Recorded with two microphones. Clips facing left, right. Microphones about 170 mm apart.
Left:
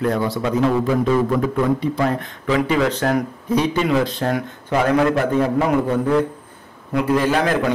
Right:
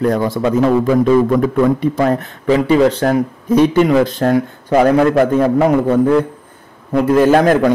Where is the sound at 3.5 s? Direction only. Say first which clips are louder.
Right 7 dB; 50° right (ahead or behind).